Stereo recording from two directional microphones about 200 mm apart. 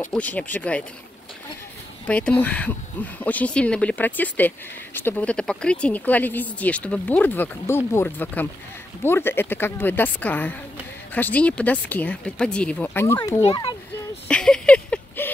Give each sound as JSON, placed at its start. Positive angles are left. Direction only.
{"t": 0.1, "sound": "speech", "side_deg": 5}
{"t": 2.0, "sound": "a child's voice", "side_deg": 5}
{"t": 14.2, "sound": "a sound", "side_deg": 5}